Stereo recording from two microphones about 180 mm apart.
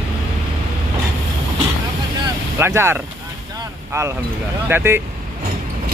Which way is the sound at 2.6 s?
15° right (ahead or behind).